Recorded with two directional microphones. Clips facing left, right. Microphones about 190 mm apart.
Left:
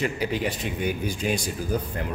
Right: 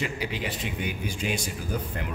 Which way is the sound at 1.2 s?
40° left (ahead or behind).